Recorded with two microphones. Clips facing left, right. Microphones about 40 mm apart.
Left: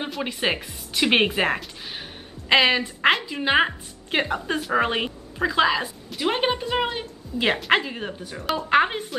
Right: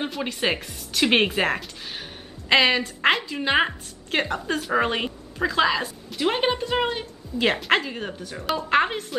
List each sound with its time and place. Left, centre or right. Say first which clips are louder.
0.0 s a woman's voice: even; centre